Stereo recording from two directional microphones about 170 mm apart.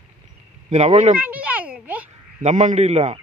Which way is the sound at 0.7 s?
40° right (ahead or behind).